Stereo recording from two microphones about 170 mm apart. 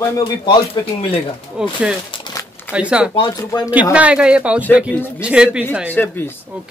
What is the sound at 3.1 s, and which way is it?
Speech, 25° left (ahead or behind).